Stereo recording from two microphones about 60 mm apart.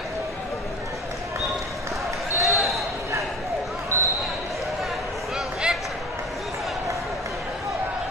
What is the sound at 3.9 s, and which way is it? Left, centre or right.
Basketball bounce, right.